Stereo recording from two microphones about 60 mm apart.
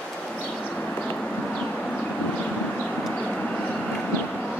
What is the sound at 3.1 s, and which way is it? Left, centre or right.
Vehicle, centre.